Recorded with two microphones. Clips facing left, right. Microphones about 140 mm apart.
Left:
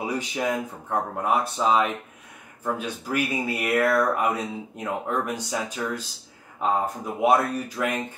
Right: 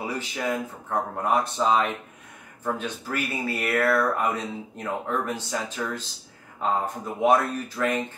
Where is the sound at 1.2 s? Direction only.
5° left (ahead or behind).